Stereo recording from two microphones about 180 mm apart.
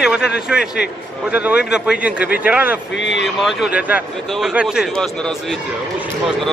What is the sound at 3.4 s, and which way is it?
Speech, 5° right (ahead or behind).